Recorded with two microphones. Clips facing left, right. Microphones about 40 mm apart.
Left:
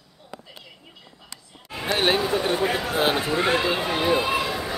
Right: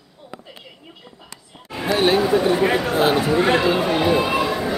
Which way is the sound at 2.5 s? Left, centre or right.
Right.